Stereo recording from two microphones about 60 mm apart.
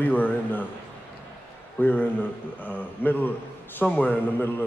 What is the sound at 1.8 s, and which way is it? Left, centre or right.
A man's voice, left.